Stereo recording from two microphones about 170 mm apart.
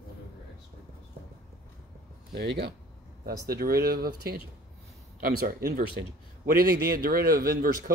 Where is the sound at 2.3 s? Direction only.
70° right (ahead or behind).